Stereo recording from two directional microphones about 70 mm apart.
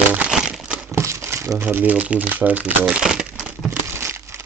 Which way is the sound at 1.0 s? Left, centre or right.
Right.